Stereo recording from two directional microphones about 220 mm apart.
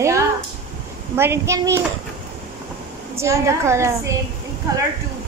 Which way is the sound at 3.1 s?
10° right (ahead or behind).